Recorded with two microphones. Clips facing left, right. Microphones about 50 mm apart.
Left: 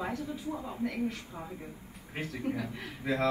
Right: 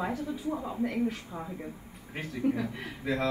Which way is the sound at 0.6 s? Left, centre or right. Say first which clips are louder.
Right 3 dB; right.